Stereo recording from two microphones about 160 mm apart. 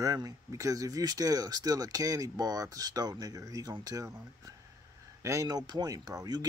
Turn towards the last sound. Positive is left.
turn(degrees=-25)  # may be behind; listen again after turning